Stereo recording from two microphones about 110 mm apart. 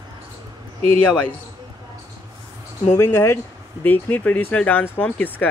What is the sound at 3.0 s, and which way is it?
A man's voice, 25° left (ahead or behind).